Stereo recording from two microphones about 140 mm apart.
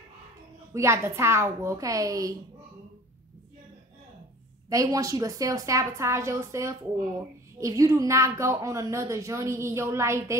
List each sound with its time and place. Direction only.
0.7 s a woman's voice: 20° right (ahead or behind)
4.6 s a woman's voice: 25° right (ahead or behind)